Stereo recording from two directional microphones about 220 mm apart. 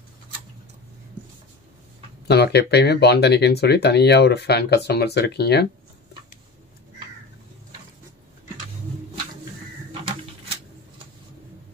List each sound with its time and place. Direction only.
2.2 s speech: 50° left (ahead or behind)